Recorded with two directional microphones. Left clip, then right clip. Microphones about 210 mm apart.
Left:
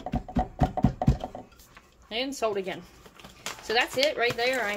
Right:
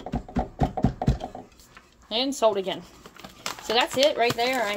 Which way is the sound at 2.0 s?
20° right (ahead or behind).